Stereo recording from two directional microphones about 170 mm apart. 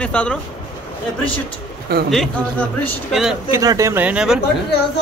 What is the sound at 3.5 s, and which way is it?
Speech, 20° right (ahead or behind).